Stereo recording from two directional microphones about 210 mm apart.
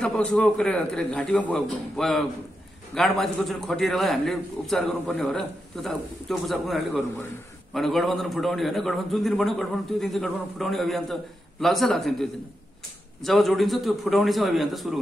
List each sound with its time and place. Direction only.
0.0 s a man's voice: 5° left (ahead or behind)